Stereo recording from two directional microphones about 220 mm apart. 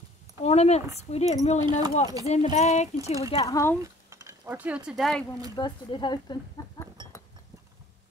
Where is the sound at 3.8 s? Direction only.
15° right (ahead or behind).